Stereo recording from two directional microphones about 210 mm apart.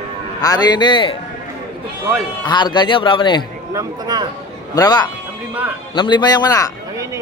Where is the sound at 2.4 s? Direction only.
20° left (ahead or behind).